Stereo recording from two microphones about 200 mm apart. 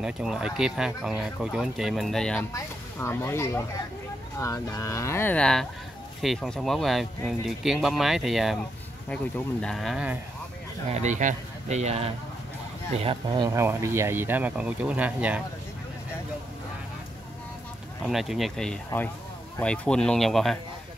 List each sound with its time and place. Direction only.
0.0 s speech: 5° right (ahead or behind)
10.9 s speech: 35° right (ahead or behind); by 15.4 s 5° right (ahead or behind)
18.0 s speech: centre (ahead or behind)